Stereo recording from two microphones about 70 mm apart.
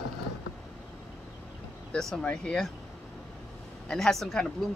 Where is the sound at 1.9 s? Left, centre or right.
Centre.